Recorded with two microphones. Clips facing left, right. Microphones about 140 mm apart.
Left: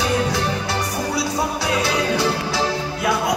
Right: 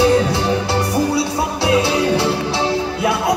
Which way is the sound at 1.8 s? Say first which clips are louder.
Right 3 dB; 25° right (ahead or behind).